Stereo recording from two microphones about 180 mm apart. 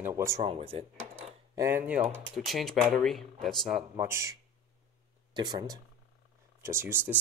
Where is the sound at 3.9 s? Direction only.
15° right (ahead or behind).